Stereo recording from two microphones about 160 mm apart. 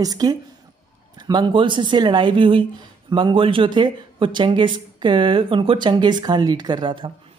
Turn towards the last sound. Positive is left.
turn(degrees=-30)  # may be behind; listen again after turning